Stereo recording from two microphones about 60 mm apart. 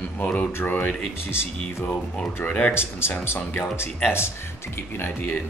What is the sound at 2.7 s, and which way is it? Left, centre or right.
Speech, left.